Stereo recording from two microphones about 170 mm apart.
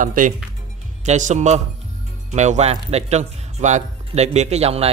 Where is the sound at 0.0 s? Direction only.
50° right (ahead or behind).